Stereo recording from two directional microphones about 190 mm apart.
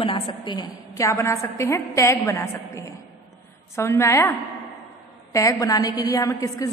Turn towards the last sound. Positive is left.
turn(degrees=20)  # may be behind; listen again after turning